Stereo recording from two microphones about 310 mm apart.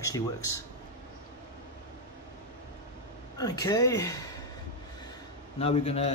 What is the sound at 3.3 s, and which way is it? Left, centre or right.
Speech, centre.